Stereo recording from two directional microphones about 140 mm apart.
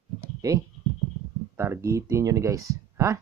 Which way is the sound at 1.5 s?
20° right (ahead or behind).